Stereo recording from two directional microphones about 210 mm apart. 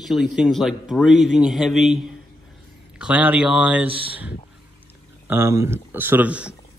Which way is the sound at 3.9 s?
25° right (ahead or behind).